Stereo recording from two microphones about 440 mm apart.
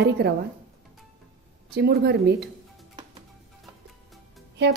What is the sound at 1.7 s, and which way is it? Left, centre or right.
Speech, right.